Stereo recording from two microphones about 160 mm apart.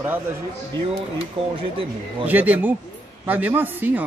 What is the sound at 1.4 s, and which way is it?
Speech, 35° right (ahead or behind).